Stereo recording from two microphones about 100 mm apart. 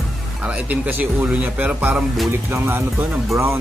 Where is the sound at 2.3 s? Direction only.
25° right (ahead or behind).